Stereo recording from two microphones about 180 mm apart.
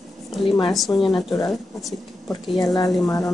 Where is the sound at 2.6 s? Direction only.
20° left (ahead or behind).